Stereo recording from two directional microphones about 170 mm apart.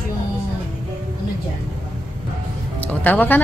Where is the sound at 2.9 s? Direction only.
10° left (ahead or behind).